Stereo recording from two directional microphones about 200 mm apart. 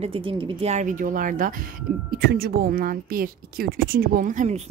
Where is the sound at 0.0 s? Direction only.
25° right (ahead or behind).